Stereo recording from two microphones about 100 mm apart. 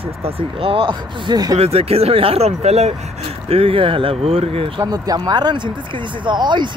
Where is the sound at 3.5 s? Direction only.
70° right (ahead or behind).